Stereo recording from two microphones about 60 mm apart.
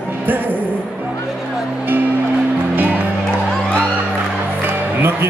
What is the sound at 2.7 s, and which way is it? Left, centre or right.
Music, right.